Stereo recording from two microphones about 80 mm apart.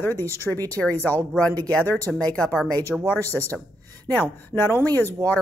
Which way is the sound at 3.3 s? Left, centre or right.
Left.